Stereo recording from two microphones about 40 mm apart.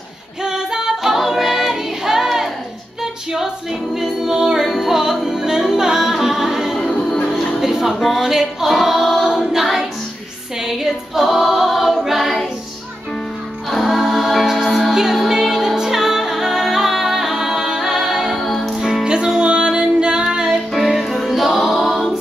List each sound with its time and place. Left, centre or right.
0.4 s music: centre
3.0 s female singing: centre
3.9 s music: centre
6.8 s music: centre
7.6 s music: centre
8.2 s female singing: centre
10.6 s a capella: centre
13.7 s music: centre
19.0 s music: right
20.5 s music: centre